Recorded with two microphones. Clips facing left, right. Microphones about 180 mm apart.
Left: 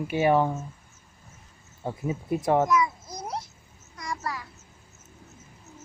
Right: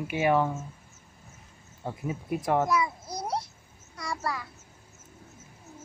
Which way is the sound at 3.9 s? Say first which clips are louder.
Right 1 dB; 30° right (ahead or behind).